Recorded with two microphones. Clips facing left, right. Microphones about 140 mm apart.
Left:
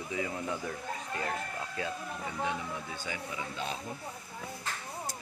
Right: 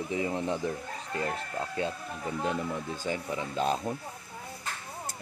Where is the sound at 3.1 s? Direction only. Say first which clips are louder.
Right 7 dB; 35° right (ahead or behind).